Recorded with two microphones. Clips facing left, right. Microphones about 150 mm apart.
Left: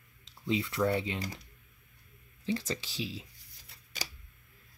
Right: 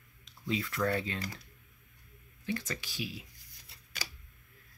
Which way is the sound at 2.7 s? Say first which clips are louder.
Left 3 dB; 25° left (ahead or behind).